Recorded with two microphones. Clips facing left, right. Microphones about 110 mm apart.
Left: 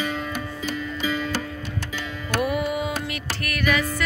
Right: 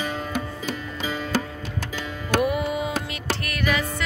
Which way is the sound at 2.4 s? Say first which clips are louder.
Even; 25° right (ahead or behind).